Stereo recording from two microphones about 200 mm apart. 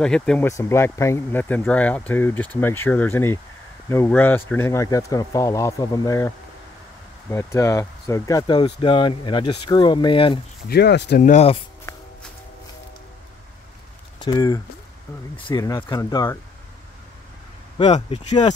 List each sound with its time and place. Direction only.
0.0 s speech: 5° left (ahead or behind)
0.5 s speech: 15° left (ahead or behind)
10.7 s speech: 55° left (ahead or behind)
14.2 s speech: 20° left (ahead or behind)
17.7 s speech: 30° left (ahead or behind)